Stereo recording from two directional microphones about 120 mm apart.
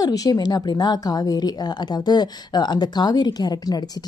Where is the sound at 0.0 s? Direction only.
30° left (ahead or behind).